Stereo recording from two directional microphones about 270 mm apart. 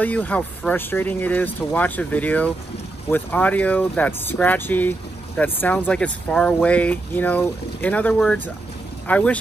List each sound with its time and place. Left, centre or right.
0.0 s speech: centre